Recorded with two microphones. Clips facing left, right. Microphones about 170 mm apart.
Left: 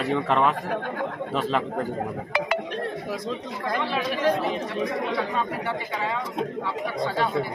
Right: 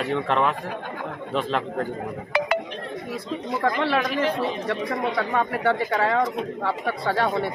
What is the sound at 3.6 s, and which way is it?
Speech, 65° right (ahead or behind).